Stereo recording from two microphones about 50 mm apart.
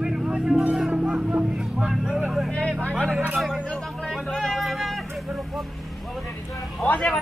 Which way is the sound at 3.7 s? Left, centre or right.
Centre.